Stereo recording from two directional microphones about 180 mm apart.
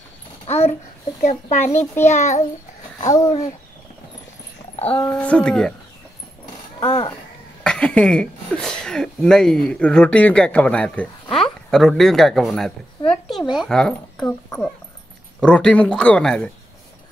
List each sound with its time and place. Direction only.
0.5 s babbling: 35° left (ahead or behind)
1.2 s speech: 40° left (ahead or behind)
3.0 s speech: 20° left (ahead or behind)
4.7 s speech: 10° left (ahead or behind)
6.8 s speech: 30° left (ahead or behind)
7.6 s speech: 5° left (ahead or behind)
15.4 s speech: 5° left (ahead or behind)